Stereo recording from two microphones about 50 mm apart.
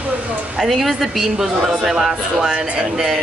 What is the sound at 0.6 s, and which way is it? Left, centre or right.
A woman's voice, centre.